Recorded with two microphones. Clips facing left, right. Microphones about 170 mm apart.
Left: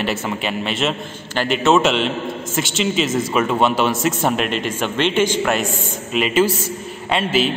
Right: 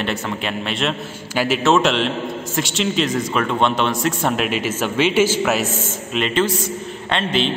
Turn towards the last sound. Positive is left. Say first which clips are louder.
# left 2 dB
turn(degrees=5)  # may be behind; listen again after turning